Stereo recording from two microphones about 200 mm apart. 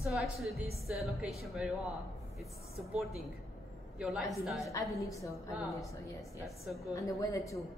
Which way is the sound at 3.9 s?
Centre (ahead or behind).